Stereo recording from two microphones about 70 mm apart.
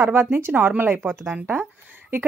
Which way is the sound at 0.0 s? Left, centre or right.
Right.